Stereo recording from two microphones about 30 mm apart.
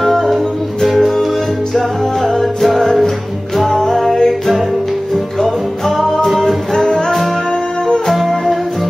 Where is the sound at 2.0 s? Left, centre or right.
Centre.